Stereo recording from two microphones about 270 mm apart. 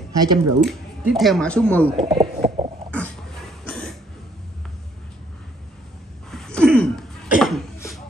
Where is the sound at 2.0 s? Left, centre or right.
Right.